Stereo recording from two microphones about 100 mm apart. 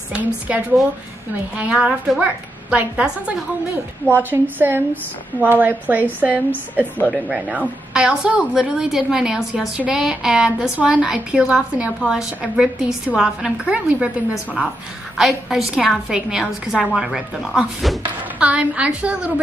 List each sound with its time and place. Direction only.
0.1 s a woman's voice: 15° right (ahead or behind)
18.4 s a woman's voice: 15° right (ahead or behind)